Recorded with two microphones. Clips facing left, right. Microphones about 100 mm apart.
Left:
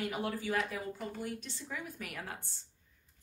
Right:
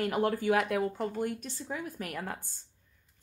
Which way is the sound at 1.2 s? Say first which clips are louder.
Right 7 dB; 50° right (ahead or behind).